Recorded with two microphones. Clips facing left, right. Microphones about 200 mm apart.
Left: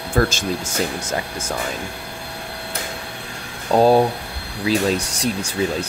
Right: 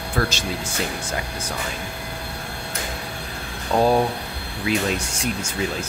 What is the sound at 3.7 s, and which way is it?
Speech, 30° left (ahead or behind).